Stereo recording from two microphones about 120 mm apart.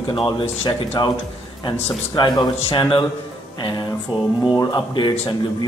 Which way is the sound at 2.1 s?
40° left (ahead or behind).